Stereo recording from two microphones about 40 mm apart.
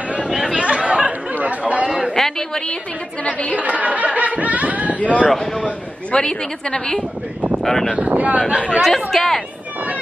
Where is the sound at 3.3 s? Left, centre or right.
Left.